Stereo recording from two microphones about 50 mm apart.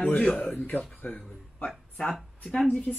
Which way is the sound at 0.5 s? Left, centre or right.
Left.